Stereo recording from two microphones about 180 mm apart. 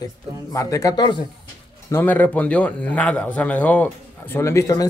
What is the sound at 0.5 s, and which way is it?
A man's voice, 15° left (ahead or behind).